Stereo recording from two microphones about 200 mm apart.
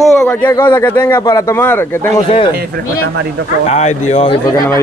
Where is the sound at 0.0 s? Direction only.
Centre (ahead or behind).